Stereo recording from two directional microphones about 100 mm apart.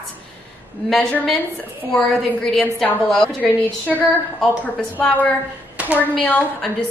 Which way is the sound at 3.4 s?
15° left (ahead or behind).